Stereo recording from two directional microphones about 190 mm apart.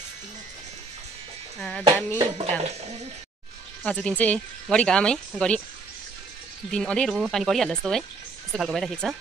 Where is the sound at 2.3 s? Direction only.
35° right (ahead or behind).